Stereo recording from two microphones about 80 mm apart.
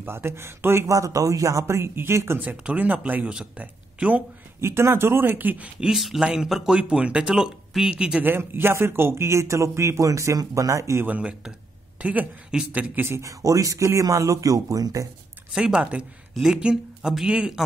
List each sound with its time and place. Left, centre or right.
0.0 s speech: right
2.5 s speech: centre
4.6 s speech: right; by 5.9 s centre
5.9 s speech: centre
8.3 s speech: right
11.1 s speech: centre
12.9 s speech: right
15.5 s speech: centre